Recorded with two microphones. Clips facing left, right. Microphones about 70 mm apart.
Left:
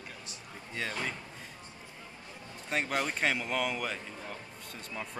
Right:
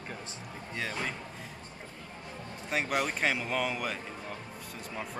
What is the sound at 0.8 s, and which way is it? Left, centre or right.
Speech, centre.